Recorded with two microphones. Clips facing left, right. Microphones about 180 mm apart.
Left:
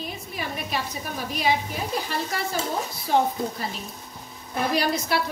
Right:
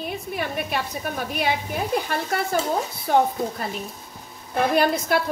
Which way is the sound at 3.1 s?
55° right (ahead or behind).